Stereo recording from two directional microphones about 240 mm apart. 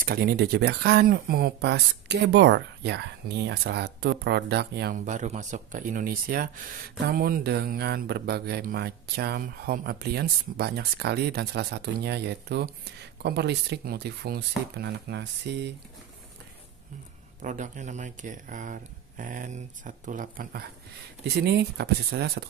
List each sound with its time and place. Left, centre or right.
0.0 s speech: right
17.4 s speech: right